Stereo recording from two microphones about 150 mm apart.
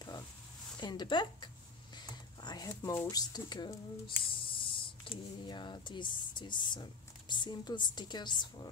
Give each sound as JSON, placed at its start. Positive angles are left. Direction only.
{"t": 0.7, "sound": "speech", "side_deg": 30}